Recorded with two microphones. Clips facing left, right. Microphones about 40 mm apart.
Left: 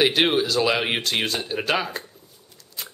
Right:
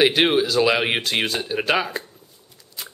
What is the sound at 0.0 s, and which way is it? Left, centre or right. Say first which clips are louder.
Speech: right 2 dB; centre.